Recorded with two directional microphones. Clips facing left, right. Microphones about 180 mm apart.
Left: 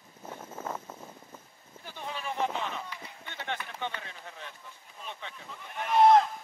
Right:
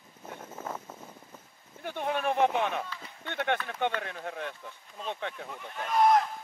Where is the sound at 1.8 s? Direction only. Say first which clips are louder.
Right 9 dB; 60° right (ahead or behind).